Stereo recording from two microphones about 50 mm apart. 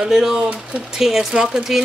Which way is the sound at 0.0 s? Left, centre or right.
Centre.